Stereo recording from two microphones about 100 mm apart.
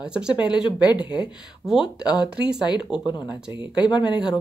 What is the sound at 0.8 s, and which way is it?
Speech, 45° left (ahead or behind).